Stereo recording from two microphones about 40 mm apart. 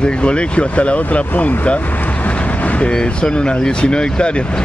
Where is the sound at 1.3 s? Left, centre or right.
Left.